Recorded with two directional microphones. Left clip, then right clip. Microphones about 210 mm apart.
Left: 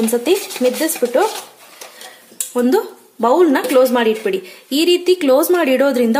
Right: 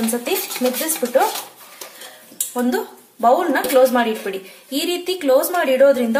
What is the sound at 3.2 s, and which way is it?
A woman's voice, 50° left (ahead or behind).